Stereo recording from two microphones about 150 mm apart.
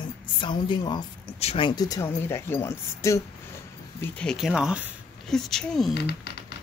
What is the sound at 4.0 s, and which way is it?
Speech, 10° left (ahead or behind).